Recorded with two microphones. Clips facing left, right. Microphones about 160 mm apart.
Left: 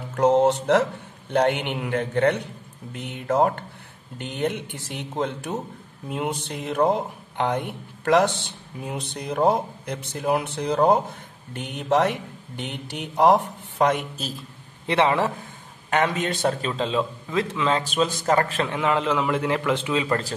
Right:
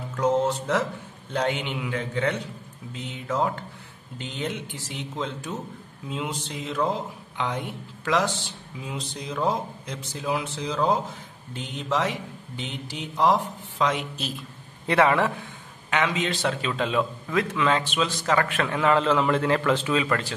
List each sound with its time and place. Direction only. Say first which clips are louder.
0.1 s speech: left 5 dB; 65° left (ahead or behind); by 14.3 s 45° left (ahead or behind)
14.9 s a man's voice: even; 25° left (ahead or behind)
15.9 s a man's voice: left 2 dB; 50° left (ahead or behind)
16.7 s a man's voice: left 1 dB; 25° left (ahead or behind)
18.6 s a man's voice: right 1 dB; 20° left (ahead or behind)
20.1 s a man's voice: left 2 dB; 35° left (ahead or behind)